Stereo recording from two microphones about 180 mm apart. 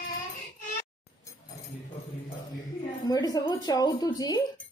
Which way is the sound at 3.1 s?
20° left (ahead or behind).